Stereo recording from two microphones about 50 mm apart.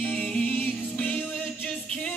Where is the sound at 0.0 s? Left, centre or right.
Left.